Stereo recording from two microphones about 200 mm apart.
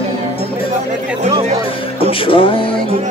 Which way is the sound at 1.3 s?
30° right (ahead or behind).